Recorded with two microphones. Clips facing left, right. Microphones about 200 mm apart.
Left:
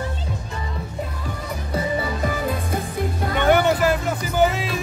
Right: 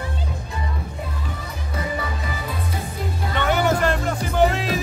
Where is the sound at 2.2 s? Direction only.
50° left (ahead or behind).